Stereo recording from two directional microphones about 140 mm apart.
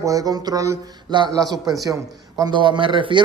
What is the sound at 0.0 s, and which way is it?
Speech, 25° right (ahead or behind).